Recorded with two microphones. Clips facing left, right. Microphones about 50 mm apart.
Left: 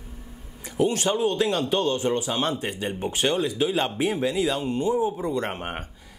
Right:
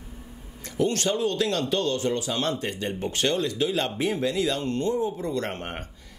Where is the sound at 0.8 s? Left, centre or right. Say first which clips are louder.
Left 2 dB; centre.